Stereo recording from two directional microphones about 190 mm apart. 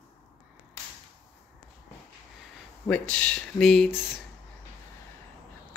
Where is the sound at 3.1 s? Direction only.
5° left (ahead or behind).